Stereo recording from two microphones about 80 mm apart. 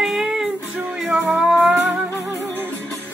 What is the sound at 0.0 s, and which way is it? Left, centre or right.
Music, centre.